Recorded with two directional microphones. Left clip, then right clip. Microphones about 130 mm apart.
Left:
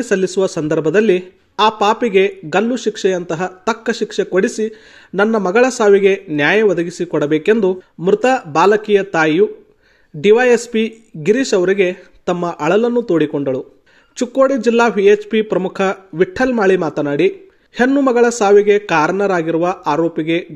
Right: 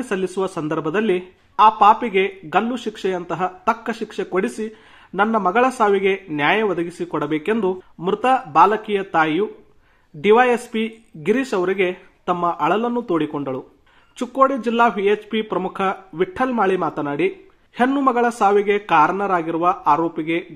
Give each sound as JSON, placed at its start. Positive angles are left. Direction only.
{"t": 0.0, "sound": "a man's voice", "side_deg": 30}